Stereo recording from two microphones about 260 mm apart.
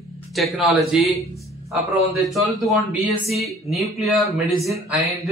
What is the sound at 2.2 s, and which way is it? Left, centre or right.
A man's voice, centre.